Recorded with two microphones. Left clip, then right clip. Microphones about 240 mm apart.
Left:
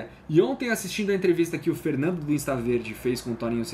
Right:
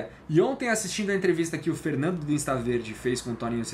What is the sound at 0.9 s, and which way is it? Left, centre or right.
Speech, right.